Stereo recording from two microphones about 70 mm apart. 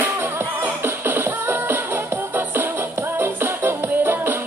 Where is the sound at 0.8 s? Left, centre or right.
Right.